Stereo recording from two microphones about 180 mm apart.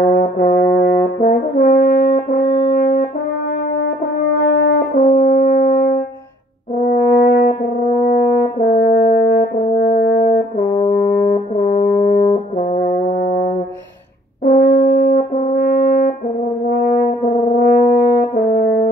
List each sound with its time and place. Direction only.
0.0 s brass instrument: 65° left (ahead or behind)
2.7 s french horn: 60° left (ahead or behind)
4.4 s french horn: 70° left (ahead or behind)
10.9 s brass instrument: 50° left (ahead or behind)
14.4 s french horn: 65° left (ahead or behind)
17.6 s french horn: 65° left (ahead or behind)